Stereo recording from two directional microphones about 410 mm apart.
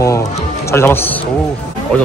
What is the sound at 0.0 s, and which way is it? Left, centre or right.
Music, centre.